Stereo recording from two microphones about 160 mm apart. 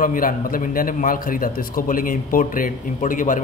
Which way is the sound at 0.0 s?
60° left (ahead or behind).